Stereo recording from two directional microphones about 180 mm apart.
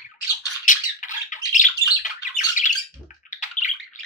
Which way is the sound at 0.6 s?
45° left (ahead or behind).